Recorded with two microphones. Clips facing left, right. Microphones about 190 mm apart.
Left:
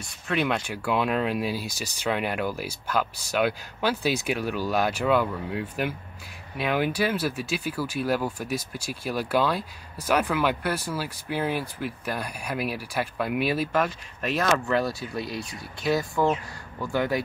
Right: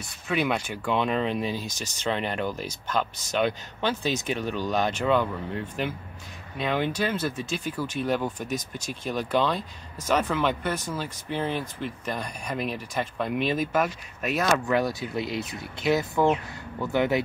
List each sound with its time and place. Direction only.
0.3 s speech: centre (ahead or behind)
13.7 s speech: 5° right (ahead or behind)
14.7 s speech: 20° right (ahead or behind)